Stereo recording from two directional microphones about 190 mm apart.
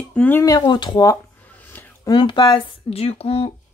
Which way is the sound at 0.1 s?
10° left (ahead or behind).